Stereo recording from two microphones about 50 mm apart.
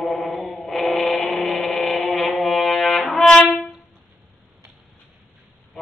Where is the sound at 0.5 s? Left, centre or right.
Centre.